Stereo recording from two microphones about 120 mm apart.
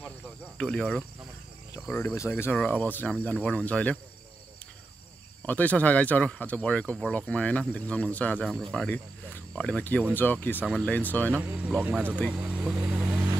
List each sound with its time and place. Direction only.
0.6 s speech: 10° left (ahead or behind)
2.1 s speech: 20° left (ahead or behind)
5.5 s speech: 15° left (ahead or behind)
11.3 s speech: 15° right (ahead or behind)
12.9 s vehicle: 15° right (ahead or behind)